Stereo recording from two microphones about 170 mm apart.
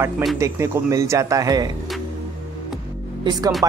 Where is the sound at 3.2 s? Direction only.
20° right (ahead or behind).